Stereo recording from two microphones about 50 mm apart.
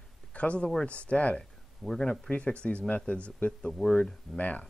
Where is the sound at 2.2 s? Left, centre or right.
Left.